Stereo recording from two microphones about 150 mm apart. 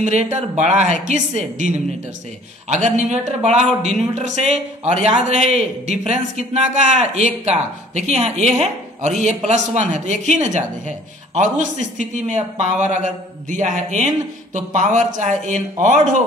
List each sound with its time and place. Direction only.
0.0 s a man's voice: 50° right (ahead or behind)